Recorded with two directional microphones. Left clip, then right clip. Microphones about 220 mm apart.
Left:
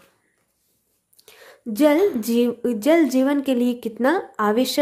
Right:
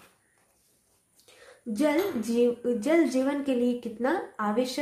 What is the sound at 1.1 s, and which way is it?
A woman's voice, 45° left (ahead or behind).